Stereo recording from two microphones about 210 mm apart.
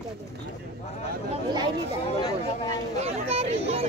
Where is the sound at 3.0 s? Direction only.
30° right (ahead or behind).